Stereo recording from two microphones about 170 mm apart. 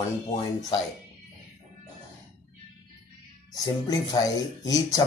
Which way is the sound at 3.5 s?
20° left (ahead or behind).